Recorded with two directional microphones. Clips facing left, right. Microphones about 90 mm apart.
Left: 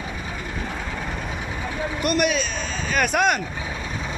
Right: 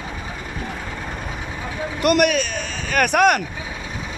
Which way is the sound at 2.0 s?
70° right (ahead or behind).